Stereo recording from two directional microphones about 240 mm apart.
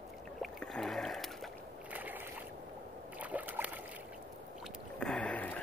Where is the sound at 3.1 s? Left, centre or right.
Centre.